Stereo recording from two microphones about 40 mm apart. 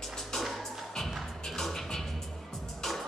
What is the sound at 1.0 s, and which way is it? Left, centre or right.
Music, centre.